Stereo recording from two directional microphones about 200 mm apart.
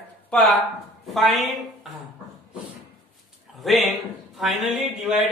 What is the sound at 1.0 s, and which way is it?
Speech, centre (ahead or behind).